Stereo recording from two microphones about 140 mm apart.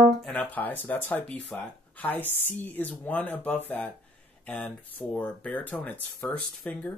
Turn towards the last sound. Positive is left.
turn(degrees=10)  # may be behind; listen again after turning